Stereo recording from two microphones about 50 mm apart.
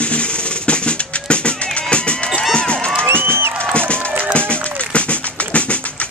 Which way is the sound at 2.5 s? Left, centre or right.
Left.